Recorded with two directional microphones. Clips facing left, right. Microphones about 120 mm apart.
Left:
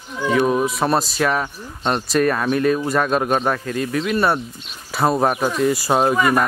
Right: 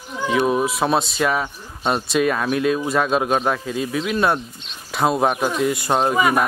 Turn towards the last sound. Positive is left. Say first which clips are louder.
# even
turn(degrees=-5)  # may be behind; listen again after turning